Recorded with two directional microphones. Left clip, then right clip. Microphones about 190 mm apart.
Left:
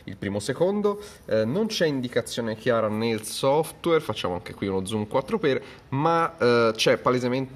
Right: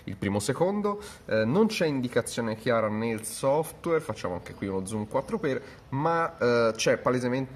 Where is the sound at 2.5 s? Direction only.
10° left (ahead or behind).